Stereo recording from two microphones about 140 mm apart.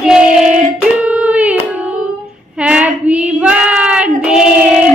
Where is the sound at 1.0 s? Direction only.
10° right (ahead or behind).